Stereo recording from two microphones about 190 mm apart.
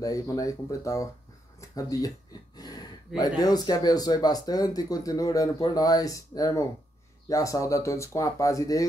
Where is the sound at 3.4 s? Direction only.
20° left (ahead or behind).